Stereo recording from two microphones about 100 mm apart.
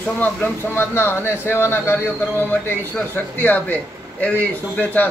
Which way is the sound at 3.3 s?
20° left (ahead or behind).